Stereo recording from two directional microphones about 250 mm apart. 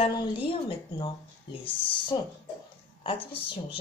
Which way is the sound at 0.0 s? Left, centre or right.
Left.